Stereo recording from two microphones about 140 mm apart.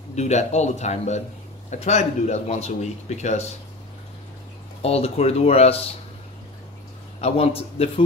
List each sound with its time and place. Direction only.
0.1 s a man's voice: 55° left (ahead or behind)
4.8 s a man's voice: 45° left (ahead or behind)
7.2 s a man's voice: 50° left (ahead or behind)